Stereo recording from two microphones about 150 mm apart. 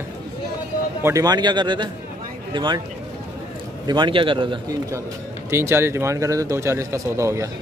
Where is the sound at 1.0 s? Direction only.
25° right (ahead or behind).